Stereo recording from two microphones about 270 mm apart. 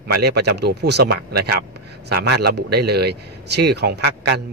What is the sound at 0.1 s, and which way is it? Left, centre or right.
A man's voice, right.